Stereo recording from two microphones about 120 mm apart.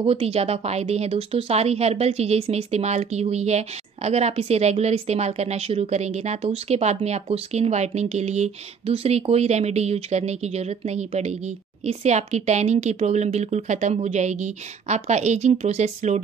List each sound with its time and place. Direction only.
0.0 s speech: 55° right (ahead or behind); by 16.2 s 70° right (ahead or behind)